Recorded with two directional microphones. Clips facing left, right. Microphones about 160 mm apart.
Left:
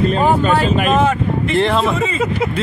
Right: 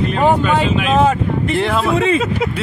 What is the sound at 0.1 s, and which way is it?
Speech, 35° left (ahead or behind).